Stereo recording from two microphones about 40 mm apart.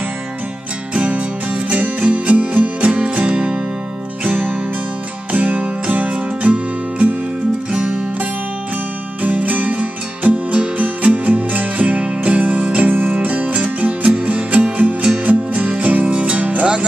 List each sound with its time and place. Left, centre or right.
0.9 s music: right
2.9 s music: right
4.2 s music: right
6.0 s music: right
9.2 s music: right
9.8 s music: right
12.9 s music: right